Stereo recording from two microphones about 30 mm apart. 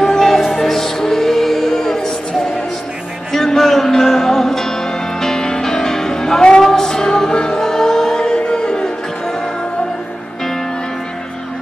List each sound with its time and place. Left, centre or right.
0.0 s music: centre
1.7 s music: centre
3.3 s music: centre